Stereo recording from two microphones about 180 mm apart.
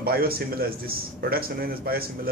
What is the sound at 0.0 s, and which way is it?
A man's voice, 55° right (ahead or behind).